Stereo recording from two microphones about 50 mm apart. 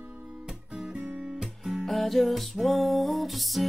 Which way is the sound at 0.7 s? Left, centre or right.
Centre.